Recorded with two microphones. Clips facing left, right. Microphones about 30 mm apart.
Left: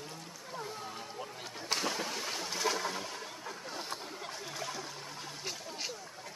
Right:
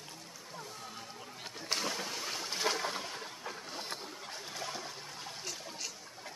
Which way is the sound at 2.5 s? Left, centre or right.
Centre.